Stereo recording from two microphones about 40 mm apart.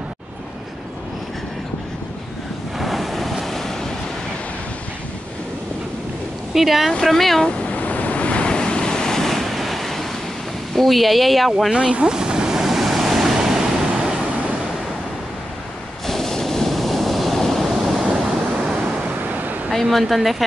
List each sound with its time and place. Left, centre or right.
2.8 s waves: centre
6.5 s speech: centre
7.7 s waves: left; by 10.0 s centre
10.7 s speech: centre
11.7 s speech: right
12.2 s vehicle: right
12.4 s waves: centre
16.1 s waves: centre
19.2 s a sound: right
19.7 s speech: centre